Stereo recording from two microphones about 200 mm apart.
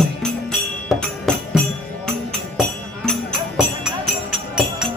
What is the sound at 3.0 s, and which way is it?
Music, 5° left (ahead or behind).